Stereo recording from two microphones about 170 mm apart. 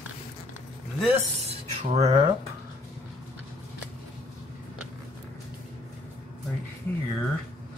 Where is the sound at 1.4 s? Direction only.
40° right (ahead or behind).